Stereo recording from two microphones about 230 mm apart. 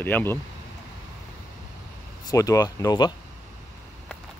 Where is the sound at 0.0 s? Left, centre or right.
Centre.